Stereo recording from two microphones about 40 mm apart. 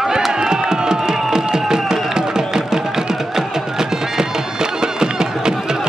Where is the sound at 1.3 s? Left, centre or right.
Centre.